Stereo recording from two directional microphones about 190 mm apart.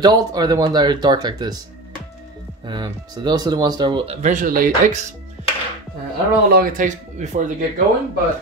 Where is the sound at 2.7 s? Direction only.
20° right (ahead or behind); by 5.1 s 40° right (ahead or behind).